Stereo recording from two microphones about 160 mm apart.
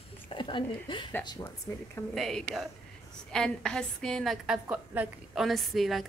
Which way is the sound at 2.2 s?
Centre (ahead or behind).